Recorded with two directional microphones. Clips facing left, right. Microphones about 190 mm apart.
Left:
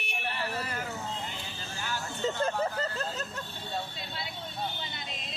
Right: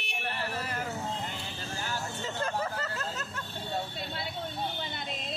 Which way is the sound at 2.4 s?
30° left (ahead or behind).